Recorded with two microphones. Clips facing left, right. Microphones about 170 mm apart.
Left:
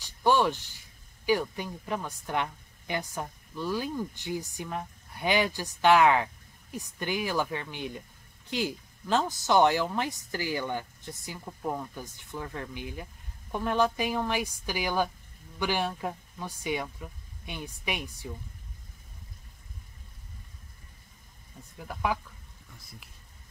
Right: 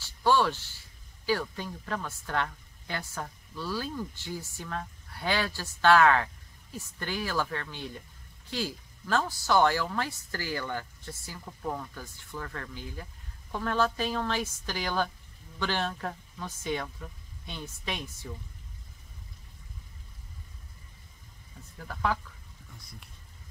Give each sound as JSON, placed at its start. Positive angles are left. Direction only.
{"t": 0.0, "sound": "speech", "side_deg": 15}
{"t": 21.7, "sound": "speech", "side_deg": 15}
{"t": 22.7, "sound": "speech", "side_deg": 0}